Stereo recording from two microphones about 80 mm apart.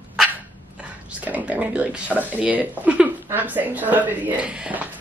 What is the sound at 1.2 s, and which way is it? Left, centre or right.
Speech, centre.